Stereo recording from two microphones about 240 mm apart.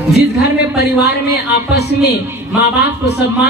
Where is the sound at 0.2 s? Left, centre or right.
Left.